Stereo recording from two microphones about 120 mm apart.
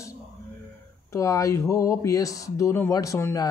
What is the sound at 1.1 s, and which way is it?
Speech, 25° left (ahead or behind).